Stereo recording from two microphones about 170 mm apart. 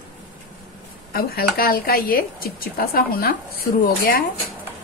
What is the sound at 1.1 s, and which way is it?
Speech, 60° left (ahead or behind).